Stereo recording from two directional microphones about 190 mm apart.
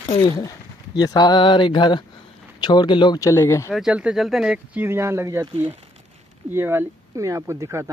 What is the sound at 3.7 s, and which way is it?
Speech, 5° right (ahead or behind).